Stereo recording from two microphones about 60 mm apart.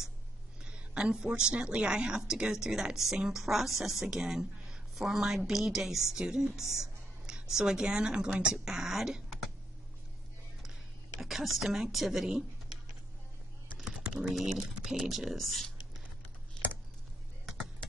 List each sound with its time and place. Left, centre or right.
0.7 s a woman's voice: centre
10.6 s a woman's voice: centre
13.7 s typing: centre
15.0 s speech: centre
16.6 s computer keyboard: centre